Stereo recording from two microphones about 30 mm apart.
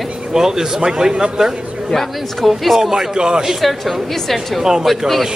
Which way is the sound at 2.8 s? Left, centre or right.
Right.